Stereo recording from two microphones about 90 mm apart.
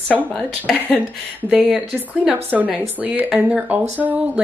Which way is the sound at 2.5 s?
5° right (ahead or behind).